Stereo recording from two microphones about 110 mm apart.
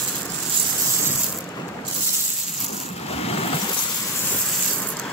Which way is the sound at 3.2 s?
65° left (ahead or behind).